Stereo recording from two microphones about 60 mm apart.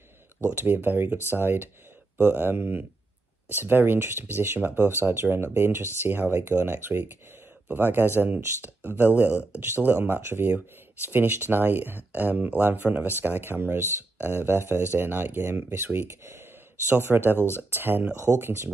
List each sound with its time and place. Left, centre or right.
0.5 s speech: right
2.1 s speech: right
2.5 s speech: right
16.1 s speech: right
16.9 s speech: right